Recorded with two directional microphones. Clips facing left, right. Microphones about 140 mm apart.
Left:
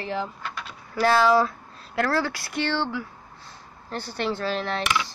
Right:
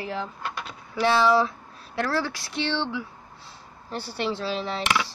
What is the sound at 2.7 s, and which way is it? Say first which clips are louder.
Speech: left 1 dB; 5° left (ahead or behind).